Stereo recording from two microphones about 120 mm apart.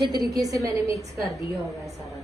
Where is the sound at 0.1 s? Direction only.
30° right (ahead or behind).